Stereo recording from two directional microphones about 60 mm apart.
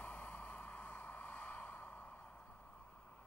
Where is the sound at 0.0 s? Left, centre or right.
Left.